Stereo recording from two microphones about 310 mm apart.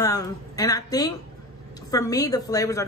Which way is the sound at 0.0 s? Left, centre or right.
Centre.